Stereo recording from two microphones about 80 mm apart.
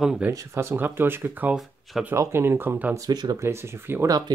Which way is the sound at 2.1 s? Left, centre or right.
Right.